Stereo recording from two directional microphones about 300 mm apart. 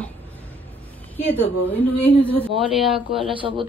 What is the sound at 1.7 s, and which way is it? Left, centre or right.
Speech, centre.